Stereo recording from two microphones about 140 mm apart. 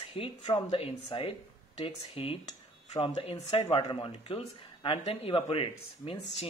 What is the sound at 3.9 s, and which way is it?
Speech, 35° left (ahead or behind).